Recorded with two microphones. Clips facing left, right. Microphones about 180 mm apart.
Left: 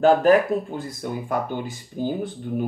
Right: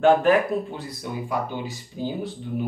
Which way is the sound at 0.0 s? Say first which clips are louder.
Left 2 dB; 40° left (ahead or behind).